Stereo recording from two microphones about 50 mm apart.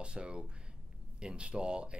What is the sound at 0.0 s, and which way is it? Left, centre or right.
Speech, right.